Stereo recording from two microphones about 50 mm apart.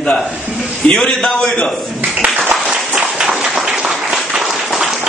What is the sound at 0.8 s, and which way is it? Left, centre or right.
Speech, left.